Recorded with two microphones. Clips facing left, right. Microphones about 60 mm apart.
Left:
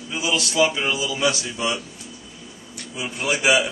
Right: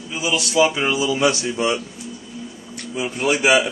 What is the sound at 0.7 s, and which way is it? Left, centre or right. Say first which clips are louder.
Speech: right 4 dB; right.